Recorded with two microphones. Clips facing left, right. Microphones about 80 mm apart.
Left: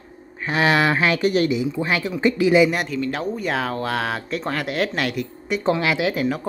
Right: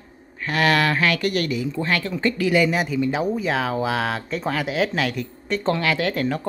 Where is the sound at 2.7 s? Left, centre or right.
Centre.